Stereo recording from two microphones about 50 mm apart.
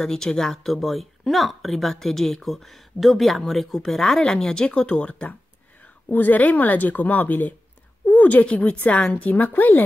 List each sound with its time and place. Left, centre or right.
0.0 s speech: centre
4.0 s speech: centre
6.0 s a woman's voice: left